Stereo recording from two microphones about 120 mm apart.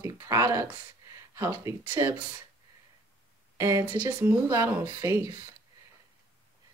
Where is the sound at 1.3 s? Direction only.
25° right (ahead or behind).